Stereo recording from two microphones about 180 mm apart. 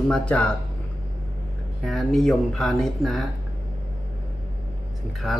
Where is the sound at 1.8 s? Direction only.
Centre (ahead or behind).